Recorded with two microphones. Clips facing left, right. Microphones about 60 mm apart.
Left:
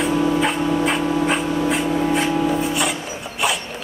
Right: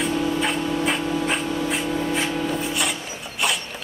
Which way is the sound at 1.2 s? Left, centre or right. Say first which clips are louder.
Left 4 dB; centre.